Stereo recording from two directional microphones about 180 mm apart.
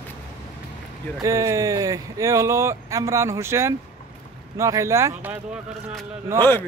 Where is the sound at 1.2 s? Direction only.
15° right (ahead or behind).